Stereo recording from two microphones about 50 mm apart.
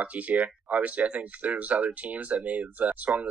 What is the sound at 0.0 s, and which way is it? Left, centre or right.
Speech, right.